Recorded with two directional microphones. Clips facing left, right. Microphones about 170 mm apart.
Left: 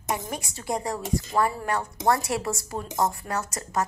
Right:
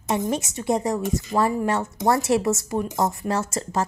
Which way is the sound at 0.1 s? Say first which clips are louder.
Right 7 dB; 20° right (ahead or behind).